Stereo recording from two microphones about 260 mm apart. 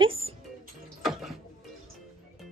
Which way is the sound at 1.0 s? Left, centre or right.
Centre.